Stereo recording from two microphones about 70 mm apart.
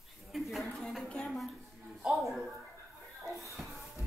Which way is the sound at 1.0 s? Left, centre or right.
Centre.